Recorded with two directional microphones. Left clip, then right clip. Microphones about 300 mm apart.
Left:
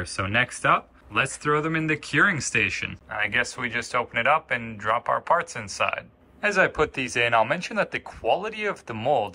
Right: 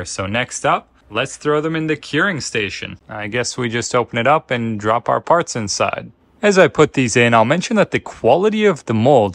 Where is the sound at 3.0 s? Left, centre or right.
Right.